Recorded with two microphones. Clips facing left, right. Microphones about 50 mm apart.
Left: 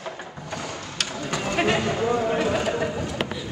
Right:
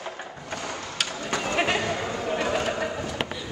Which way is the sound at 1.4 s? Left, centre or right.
Centre.